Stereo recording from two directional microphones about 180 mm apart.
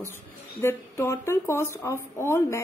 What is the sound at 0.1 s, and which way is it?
A woman's voice, 15° left (ahead or behind).